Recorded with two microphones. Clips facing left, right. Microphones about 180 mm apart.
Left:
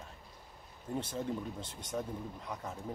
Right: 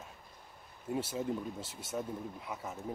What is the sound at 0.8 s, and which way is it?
Speech, 5° right (ahead or behind).